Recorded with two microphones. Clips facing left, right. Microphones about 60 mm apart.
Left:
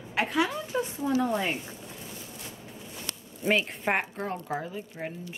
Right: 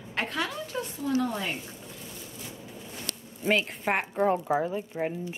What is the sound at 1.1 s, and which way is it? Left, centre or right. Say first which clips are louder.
Child singing: left 2 dB; centre.